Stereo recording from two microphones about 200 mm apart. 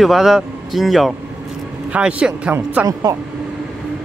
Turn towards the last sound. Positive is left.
turn(degrees=-10)  # may be behind; listen again after turning